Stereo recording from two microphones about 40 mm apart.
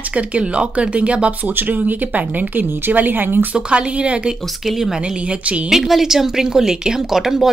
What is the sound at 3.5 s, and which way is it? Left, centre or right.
Speech, right.